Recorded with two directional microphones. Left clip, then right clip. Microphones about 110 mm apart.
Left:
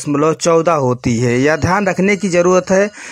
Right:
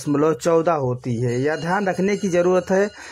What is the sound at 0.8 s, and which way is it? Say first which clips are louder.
Speech: left 8 dB; 35° left (ahead or behind).